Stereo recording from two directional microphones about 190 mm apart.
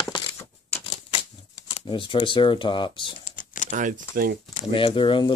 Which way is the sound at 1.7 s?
25° left (ahead or behind).